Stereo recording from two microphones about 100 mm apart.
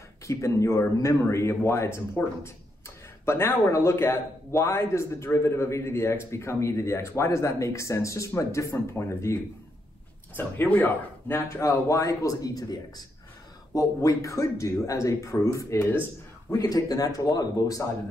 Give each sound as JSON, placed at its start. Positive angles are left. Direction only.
{"t": 0.3, "sound": "a man's voice", "side_deg": 30}
{"t": 10.3, "sound": "speech", "side_deg": 15}
{"t": 11.3, "sound": "speech", "side_deg": 30}